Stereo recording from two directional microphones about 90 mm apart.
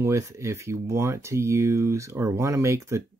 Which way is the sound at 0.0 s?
35° right (ahead or behind).